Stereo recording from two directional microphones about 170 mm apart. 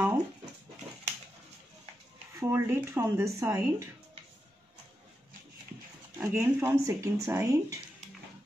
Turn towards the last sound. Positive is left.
turn(degrees=-20)  # may be behind; listen again after turning